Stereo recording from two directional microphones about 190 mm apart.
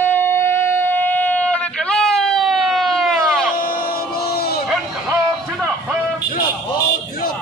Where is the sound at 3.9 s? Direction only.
55° left (ahead or behind).